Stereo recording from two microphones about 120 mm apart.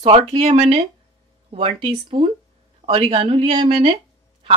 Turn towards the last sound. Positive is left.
turn(degrees=-50)  # may be behind; listen again after turning